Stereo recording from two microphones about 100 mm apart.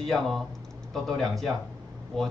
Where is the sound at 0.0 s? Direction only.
Centre (ahead or behind).